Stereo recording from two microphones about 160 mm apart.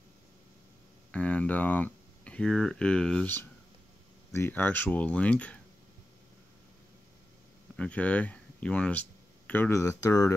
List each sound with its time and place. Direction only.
1.1 s speech: 10° left (ahead or behind)
7.7 s speech: 10° left (ahead or behind)